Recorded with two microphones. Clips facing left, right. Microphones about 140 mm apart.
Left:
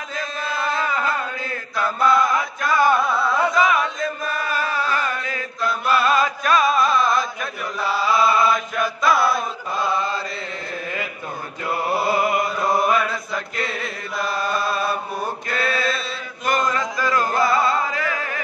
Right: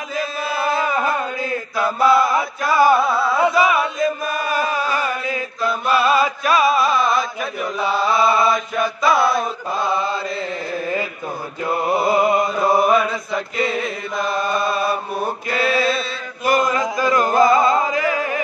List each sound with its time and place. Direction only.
0.1 s chant: 10° right (ahead or behind)
11.8 s chant: centre (ahead or behind)
12.1 s a sound: 25° right (ahead or behind)
12.7 s chant: 5° right (ahead or behind)